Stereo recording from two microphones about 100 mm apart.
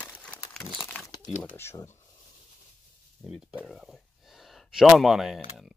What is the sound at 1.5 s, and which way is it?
Speech, 25° left (ahead or behind).